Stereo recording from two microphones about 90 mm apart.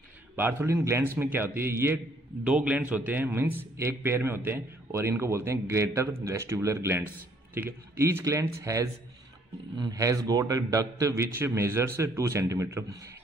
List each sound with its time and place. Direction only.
0.4 s a man's voice: 25° right (ahead or behind)
2.4 s a man's voice: 10° right (ahead or behind); by 12.8 s 30° right (ahead or behind)